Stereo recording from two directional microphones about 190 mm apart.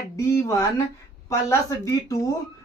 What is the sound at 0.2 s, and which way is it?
Speech, 15° left (ahead or behind).